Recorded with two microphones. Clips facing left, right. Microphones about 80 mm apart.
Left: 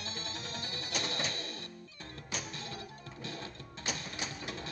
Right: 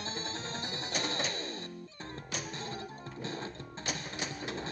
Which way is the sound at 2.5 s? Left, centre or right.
Right.